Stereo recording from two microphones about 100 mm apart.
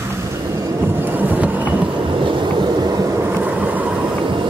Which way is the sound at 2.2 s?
55° right (ahead or behind).